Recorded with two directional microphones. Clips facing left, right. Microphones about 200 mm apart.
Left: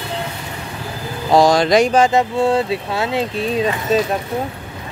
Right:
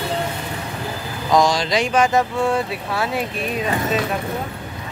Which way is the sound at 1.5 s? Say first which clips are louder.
Left 7 dB; 50° left (ahead or behind).